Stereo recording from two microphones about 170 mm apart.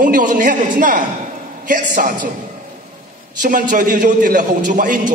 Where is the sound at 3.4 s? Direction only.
50° right (ahead or behind).